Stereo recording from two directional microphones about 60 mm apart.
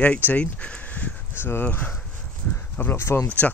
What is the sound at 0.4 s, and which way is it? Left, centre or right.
Speech, left.